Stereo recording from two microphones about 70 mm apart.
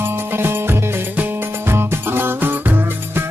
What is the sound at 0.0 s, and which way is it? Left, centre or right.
Music, right.